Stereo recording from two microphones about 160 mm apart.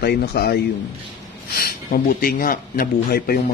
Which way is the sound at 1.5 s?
65° left (ahead or behind).